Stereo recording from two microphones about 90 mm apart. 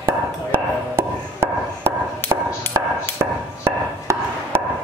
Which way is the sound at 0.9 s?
25° right (ahead or behind).